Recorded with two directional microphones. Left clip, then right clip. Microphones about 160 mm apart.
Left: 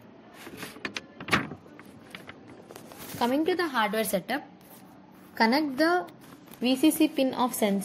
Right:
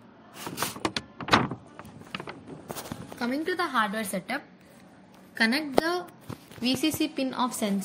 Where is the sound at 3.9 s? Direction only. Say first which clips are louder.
Left 5 dB; 55° left (ahead or behind).